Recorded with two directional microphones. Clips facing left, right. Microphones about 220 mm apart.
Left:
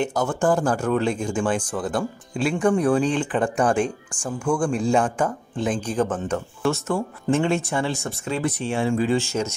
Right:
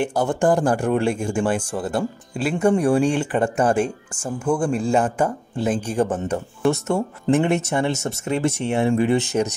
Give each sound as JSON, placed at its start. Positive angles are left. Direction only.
{"t": 0.3, "sound": "speech", "side_deg": -15}